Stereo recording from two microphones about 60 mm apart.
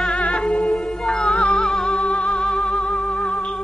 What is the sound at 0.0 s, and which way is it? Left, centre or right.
Music, centre.